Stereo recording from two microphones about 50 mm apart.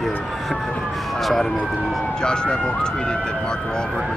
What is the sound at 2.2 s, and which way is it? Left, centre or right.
Speech, centre.